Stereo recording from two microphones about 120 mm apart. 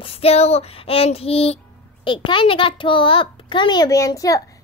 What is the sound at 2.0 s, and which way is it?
A child's voice, 45° left (ahead or behind).